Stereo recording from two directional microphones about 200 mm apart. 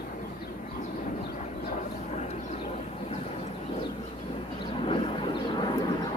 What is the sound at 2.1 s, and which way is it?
Vehicle, 30° left (ahead or behind).